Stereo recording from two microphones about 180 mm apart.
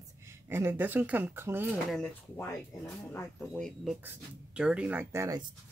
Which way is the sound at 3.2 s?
15° left (ahead or behind).